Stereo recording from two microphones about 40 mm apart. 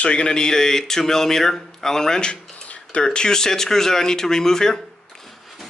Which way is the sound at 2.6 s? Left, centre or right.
Left.